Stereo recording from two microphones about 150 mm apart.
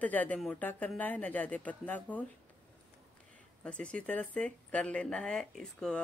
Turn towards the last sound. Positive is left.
turn(degrees=5)  # may be behind; listen again after turning